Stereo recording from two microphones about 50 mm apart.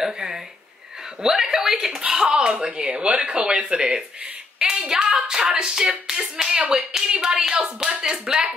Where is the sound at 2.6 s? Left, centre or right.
Right.